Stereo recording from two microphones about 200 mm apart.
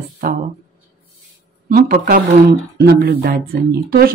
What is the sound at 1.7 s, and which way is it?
Speech, 45° right (ahead or behind).